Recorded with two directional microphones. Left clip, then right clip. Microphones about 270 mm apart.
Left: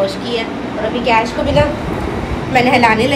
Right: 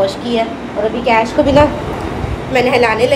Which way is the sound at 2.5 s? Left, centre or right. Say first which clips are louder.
Left 1 dB; centre.